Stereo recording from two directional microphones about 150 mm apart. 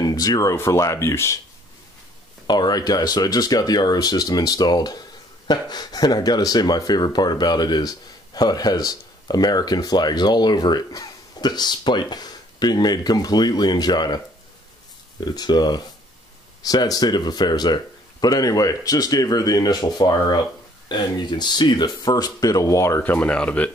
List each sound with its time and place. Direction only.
0.0 s speech: 25° left (ahead or behind)
2.4 s speech: 30° left (ahead or behind); by 23.7 s 10° left (ahead or behind)